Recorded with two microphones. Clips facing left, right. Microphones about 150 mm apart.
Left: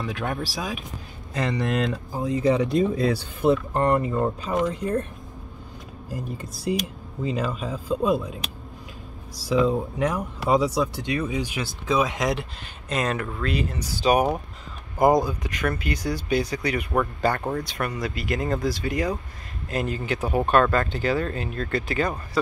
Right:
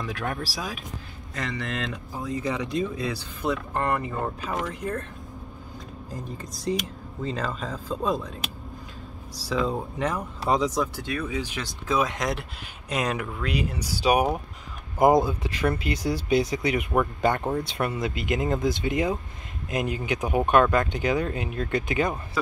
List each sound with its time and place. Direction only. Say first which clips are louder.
0.0 s speech: left 2 dB; centre (ahead or behind)
1.3 s speech: left 7 dB; 35° left (ahead or behind)
6.1 s speech: left 4 dB; 5° left (ahead or behind)
9.4 s speech: left 5 dB; 10° left (ahead or behind)
12.9 s speech: left 1 dB; 10° right (ahead or behind)
15.0 s speech: even; 20° right (ahead or behind)
16.9 s speech: left 1 dB; 10° right (ahead or behind)
17.6 s speech: right 1 dB; 25° right (ahead or behind)